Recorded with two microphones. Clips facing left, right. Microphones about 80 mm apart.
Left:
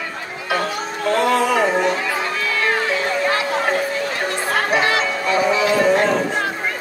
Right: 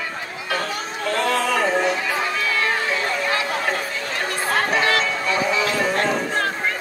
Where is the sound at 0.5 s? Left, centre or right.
Left.